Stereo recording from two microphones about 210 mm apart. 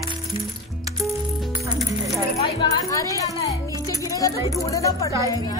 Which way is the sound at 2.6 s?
15° left (ahead or behind).